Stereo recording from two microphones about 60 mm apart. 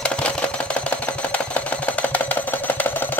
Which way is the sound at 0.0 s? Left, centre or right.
Centre.